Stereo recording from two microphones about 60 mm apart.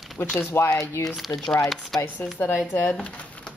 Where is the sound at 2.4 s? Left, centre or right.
Left.